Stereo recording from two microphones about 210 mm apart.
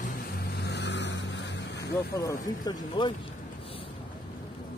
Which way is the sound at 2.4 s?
20° left (ahead or behind).